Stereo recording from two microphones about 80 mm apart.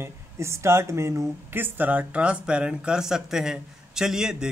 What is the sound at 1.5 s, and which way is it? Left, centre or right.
Speech, right.